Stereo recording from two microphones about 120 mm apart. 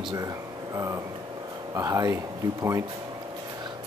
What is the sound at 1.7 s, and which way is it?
Speech, 25° right (ahead or behind).